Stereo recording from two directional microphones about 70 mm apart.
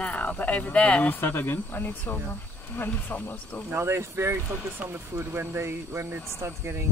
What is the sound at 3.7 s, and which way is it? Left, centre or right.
Speech, right.